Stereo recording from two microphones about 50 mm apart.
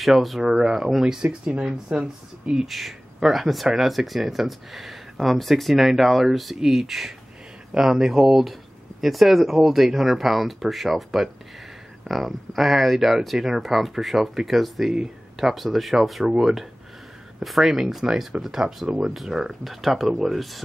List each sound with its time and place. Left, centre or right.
0.0 s speech: centre
1.4 s speech: right
2.6 s speech: centre